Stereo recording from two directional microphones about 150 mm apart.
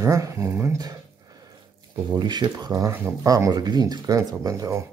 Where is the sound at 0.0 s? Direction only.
20° right (ahead or behind).